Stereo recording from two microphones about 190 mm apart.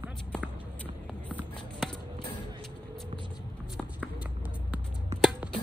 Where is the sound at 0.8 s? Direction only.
5° left (ahead or behind).